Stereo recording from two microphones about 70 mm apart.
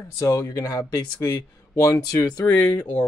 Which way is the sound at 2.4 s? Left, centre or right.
Left.